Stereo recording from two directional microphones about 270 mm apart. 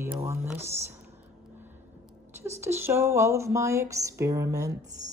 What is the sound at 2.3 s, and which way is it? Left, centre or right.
Speech, centre.